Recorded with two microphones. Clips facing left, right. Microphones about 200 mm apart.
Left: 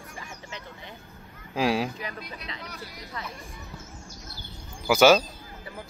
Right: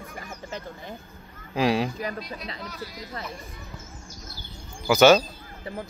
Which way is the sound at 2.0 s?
40° right (ahead or behind).